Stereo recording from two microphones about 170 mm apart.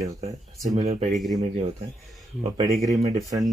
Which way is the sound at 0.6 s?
40° right (ahead or behind).